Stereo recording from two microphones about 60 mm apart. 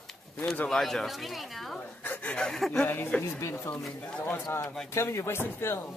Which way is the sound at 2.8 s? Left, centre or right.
Left.